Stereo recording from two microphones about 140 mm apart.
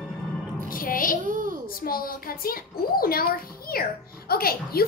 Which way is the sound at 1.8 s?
90° left.